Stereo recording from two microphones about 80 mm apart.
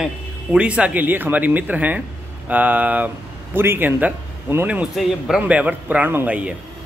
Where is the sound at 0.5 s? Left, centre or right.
Centre; by 4.6 s right.